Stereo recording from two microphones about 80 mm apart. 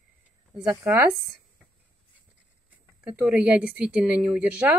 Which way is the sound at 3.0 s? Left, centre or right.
Centre.